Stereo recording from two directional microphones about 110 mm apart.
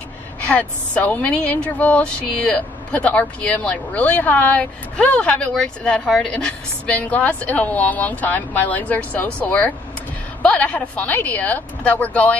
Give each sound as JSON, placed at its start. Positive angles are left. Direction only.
{"t": 0.5, "sound": "a woman's voice", "side_deg": 15}